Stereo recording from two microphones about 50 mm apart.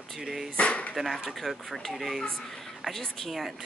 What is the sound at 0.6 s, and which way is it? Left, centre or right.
Speech, left.